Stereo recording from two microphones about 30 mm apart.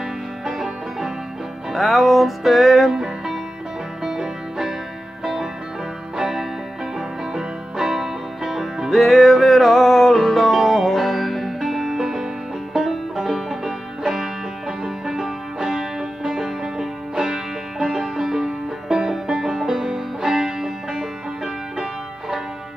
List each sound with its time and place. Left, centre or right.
0.5 s music: centre
2.9 s music: centre
7.3 s music: centre
8.9 s music: centre